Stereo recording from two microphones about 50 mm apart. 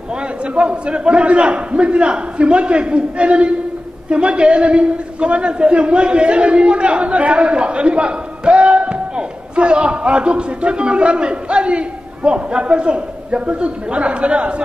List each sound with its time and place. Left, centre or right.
0.6 s a man's voice: right